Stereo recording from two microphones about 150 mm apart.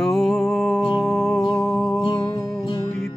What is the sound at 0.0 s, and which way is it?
Music, centre (ahead or behind).